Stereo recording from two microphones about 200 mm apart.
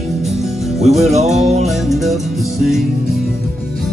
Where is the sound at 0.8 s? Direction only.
Centre (ahead or behind).